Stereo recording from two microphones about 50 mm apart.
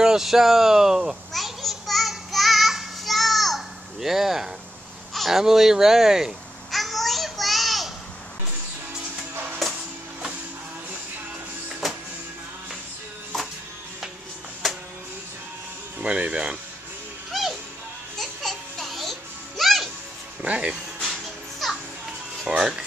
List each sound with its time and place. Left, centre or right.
0.0 s speech: centre
1.3 s child singing: centre
5.1 s a sound: centre
5.4 s speech: centre
6.7 s a sound: centre
11.8 s music: centre
14.6 s music: centre
16.0 s speech: right
17.3 s music: centre
20.4 s speech: right
21.6 s children playing: centre
22.6 s speech: centre